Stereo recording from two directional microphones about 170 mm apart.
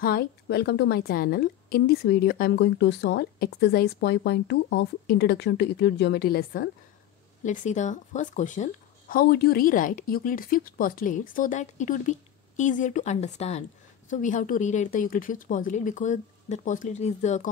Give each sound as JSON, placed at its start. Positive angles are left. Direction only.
{"t": 0.0, "sound": "a woman's voice", "side_deg": 65}
{"t": 7.4, "sound": "speech", "side_deg": 45}
{"t": 9.1, "sound": "speech", "side_deg": 65}